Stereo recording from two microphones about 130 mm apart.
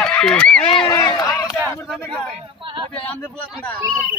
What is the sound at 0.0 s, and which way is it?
Honk, 5° left (ahead or behind).